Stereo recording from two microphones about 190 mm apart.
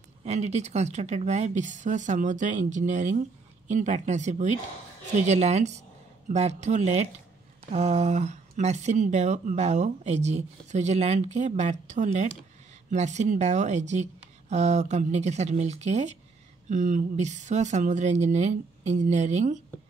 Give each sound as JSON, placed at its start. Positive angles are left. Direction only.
{"t": 0.2, "sound": "speech", "side_deg": -35}